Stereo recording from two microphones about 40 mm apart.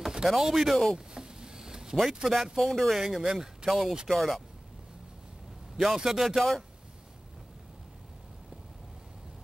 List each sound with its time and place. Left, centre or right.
0.2 s speech: centre
0.9 s a sound: centre
2.2 s speech: centre
2.7 s speech: centre
3.0 s speech: centre
4.1 s speech: centre
5.9 s speech: centre